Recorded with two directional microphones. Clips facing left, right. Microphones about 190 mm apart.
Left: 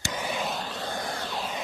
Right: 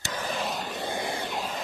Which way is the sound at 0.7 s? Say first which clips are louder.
Right 2 dB; 15° right (ahead or behind).